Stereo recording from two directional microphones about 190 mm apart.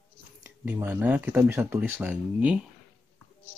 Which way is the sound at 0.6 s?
10° right (ahead or behind).